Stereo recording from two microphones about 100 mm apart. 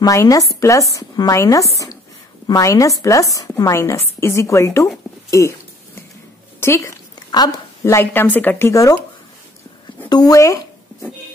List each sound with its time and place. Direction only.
0.0 s a woman's voice: 35° left (ahead or behind)
5.3 s a sound: 30° left (ahead or behind)
6.6 s a woman's voice: 30° left (ahead or behind)
7.2 s speech: 45° left (ahead or behind)
7.8 s a woman's voice: 25° left (ahead or behind)
10.0 s speech: 40° left (ahead or behind)